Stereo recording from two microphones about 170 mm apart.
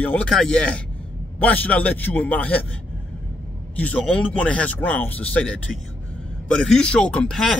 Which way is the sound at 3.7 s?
10° left (ahead or behind).